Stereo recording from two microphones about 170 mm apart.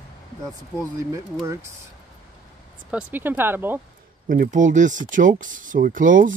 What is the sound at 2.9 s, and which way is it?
Speech, 10° right (ahead or behind).